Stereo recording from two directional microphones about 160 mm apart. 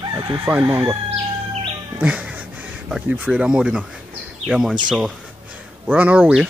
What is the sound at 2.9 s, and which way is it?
Speech, 5° right (ahead or behind).